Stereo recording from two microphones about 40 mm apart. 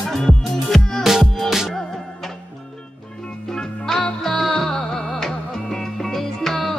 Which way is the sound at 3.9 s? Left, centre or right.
Centre.